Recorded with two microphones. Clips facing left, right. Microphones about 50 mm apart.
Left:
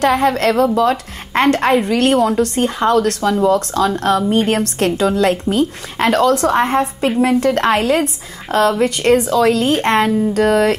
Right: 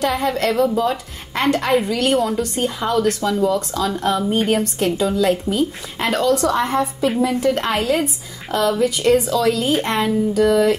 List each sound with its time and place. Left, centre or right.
0.0 s a woman's voice: left
7.2 s a woman's voice: left